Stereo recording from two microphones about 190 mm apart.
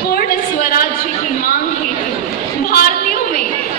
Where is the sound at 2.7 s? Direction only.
50° left (ahead or behind).